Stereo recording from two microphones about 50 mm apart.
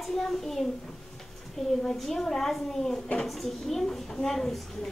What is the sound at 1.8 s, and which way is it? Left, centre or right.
A woman's voice, centre.